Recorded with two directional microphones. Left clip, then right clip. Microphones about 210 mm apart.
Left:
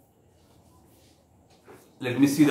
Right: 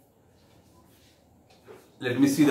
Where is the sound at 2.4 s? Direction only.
5° left (ahead or behind).